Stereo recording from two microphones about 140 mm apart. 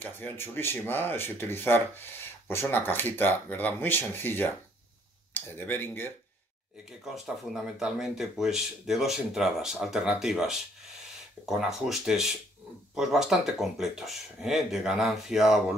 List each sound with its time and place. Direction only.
0.0 s speech: 15° left (ahead or behind)
7.8 s speech: centre (ahead or behind)